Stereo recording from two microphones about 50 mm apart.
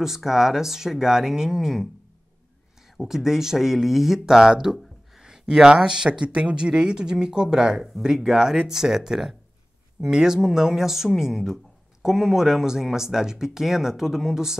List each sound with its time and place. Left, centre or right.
0.0 s speech: centre
3.0 s speech: centre